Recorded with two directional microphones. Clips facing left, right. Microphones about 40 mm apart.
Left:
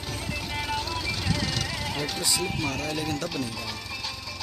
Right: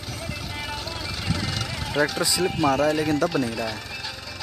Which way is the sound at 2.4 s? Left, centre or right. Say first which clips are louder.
Right 9 dB; centre.